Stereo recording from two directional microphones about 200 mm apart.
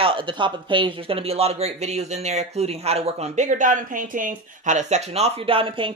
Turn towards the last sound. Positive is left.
turn(degrees=-25)  # may be behind; listen again after turning